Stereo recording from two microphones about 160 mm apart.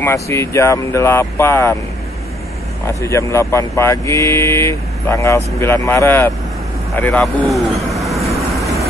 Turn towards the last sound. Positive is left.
turn(degrees=0)  # may be behind; listen again after turning